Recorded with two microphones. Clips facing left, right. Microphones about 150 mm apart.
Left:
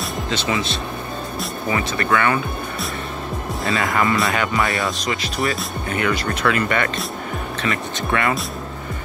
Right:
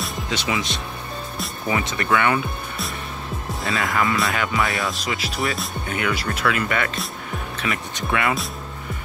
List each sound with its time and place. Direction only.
0.3 s speech: 10° right (ahead or behind)
3.6 s speech: centre (ahead or behind)